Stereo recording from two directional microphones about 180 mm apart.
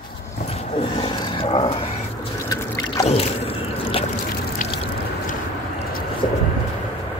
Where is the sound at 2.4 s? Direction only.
20° left (ahead or behind).